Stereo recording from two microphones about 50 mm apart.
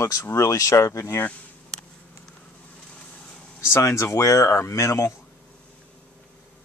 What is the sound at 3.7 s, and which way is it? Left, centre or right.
Speech, left.